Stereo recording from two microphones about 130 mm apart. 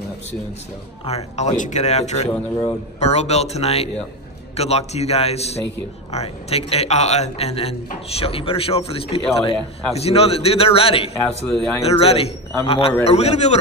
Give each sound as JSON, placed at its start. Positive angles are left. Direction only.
{"t": 1.0, "sound": "a man's voice", "side_deg": 55}